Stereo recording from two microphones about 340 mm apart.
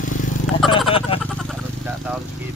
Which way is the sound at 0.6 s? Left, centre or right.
Centre.